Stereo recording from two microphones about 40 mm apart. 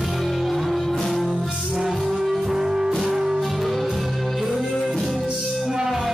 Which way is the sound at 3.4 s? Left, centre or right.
Centre.